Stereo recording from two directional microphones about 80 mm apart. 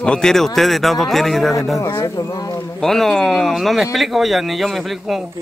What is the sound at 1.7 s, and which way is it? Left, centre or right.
Speech, left.